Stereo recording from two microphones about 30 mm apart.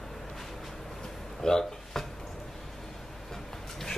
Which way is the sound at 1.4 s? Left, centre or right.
Left.